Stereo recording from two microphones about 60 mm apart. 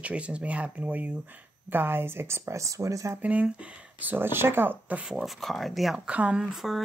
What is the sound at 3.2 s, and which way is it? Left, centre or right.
Speech, right.